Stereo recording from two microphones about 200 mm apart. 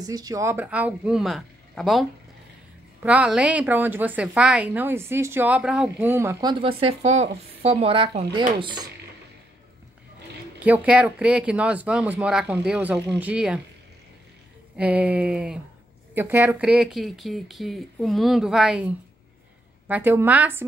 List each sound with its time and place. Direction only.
0.0 s a woman's voice: 20° right (ahead or behind)
6.6 s speech: 30° right (ahead or behind)
10.6 s a woman's voice: 5° right (ahead or behind)
14.8 s a woman's voice: 5° right (ahead or behind)